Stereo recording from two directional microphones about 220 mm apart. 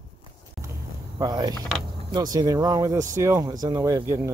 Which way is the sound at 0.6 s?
15° right (ahead or behind).